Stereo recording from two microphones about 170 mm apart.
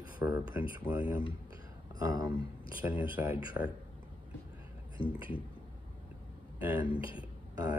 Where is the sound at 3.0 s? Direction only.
10° right (ahead or behind).